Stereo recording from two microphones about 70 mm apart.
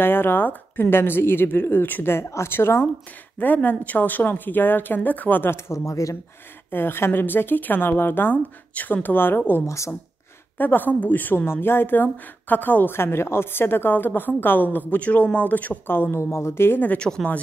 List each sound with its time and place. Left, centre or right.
0.0 s a woman's voice: left
3.3 s a woman's voice: left
5.7 s speech: left
6.7 s a woman's voice: left
9.7 s speech: left
10.6 s a woman's voice: left